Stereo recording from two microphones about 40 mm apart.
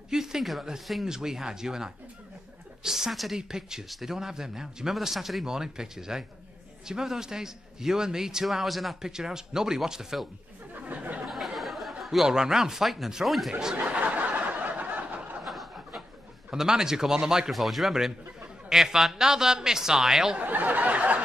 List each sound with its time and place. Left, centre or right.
0.1 s a man's voice: centre
8.5 s speech: centre
9.0 s a man's voice: centre
10.7 s chatter: right
11.2 s a sound: centre
12.0 s a man's voice: centre
13.5 s a man's voice: centre
13.7 s snicker: right
15.4 s a sound: centre
16.4 s a man's voice: centre
17.5 s a man's voice: centre
20.3 s a sound: right